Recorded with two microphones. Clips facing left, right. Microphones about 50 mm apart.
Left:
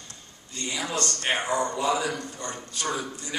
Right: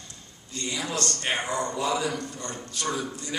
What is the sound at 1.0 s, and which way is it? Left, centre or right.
A man's voice, centre.